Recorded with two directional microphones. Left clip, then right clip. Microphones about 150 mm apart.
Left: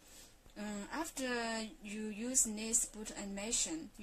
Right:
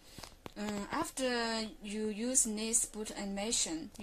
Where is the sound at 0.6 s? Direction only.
30° right (ahead or behind).